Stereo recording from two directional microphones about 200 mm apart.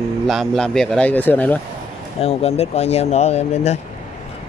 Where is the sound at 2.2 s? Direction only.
30° left (ahead or behind).